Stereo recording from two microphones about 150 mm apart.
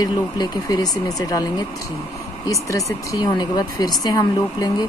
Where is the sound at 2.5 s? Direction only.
20° left (ahead or behind).